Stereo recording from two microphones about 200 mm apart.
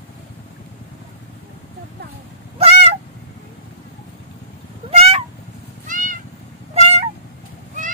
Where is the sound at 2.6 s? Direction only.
30° right (ahead or behind).